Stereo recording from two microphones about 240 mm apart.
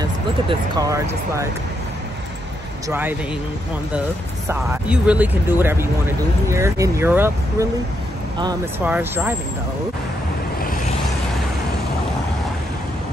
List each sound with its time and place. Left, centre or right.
0.0 s speech: centre
2.9 s speech: centre
4.5 s speech: centre
8.8 s speech: centre